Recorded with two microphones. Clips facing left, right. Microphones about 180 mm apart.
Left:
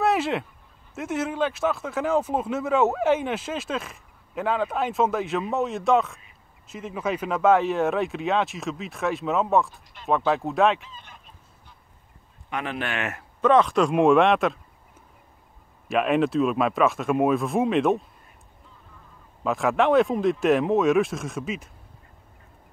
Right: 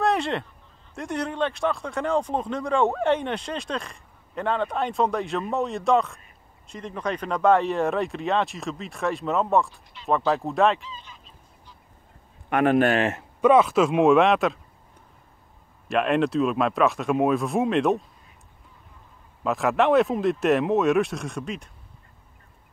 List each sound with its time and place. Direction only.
0.0 s goose: 5° left (ahead or behind)
0.9 s speech: 5° left (ahead or behind)
10.8 s goose: 55° left (ahead or behind)
12.4 s a man's voice: 55° right (ahead or behind); by 13.2 s 35° right (ahead or behind)
13.4 s speech: 10° right (ahead or behind)
15.9 s speech: centre (ahead or behind)
19.4 s speech: centre (ahead or behind)